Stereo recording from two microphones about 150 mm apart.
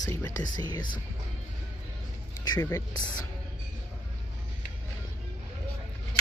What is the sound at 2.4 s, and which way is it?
Speech, 25° left (ahead or behind).